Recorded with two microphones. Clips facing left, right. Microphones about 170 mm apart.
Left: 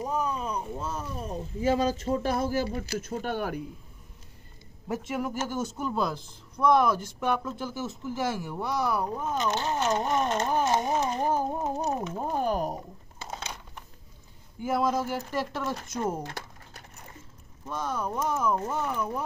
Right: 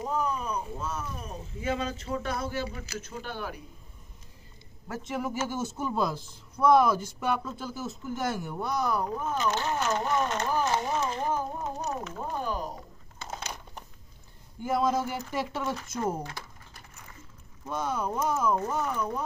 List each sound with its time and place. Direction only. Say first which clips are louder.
0.0 s a sound: even; 20° left (ahead or behind)
1.6 s speech: left 6 dB; 35° left (ahead or behind)
5.0 s speech: right 2 dB; centre (ahead or behind); by 10.9 s 20° left (ahead or behind)
11.2 s speech: left 3 dB; 35° left (ahead or behind); by 12.7 s 55° left (ahead or behind)
14.6 s speech: even; centre (ahead or behind)
17.6 s speech: right 1 dB; 10° right (ahead or behind); by 19.2 s 5° left (ahead or behind)